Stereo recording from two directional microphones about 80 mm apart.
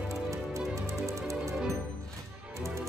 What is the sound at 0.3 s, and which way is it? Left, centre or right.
Music, right.